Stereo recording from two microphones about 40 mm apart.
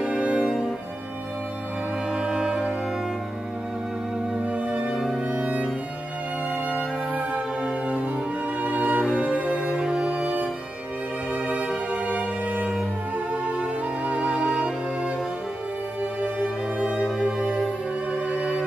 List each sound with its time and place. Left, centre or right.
0.0 s music: right
2.1 s music: centre
4.6 s music: right
4.9 s music: centre
5.3 s music: right
6.7 s music: right
16.3 s music: right